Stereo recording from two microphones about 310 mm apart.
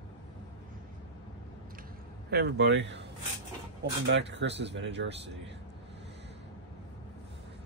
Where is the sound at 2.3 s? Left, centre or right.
Right.